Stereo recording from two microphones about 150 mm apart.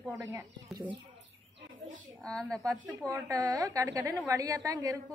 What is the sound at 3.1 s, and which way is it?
A woman's voice, 25° right (ahead or behind).